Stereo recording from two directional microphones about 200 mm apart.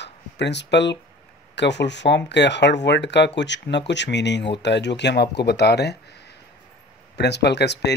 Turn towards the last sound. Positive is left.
turn(degrees=60)  # may be behind; listen again after turning